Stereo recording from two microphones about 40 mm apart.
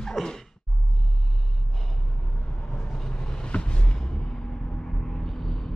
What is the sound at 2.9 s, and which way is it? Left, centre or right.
Vehicle, centre.